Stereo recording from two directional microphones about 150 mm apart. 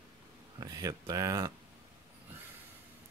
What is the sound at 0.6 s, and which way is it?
Speech, 25° right (ahead or behind).